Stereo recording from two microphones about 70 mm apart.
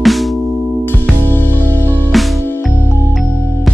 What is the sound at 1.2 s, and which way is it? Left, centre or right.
Music, left.